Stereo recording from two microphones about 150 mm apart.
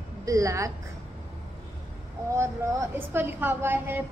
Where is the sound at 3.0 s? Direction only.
15° right (ahead or behind).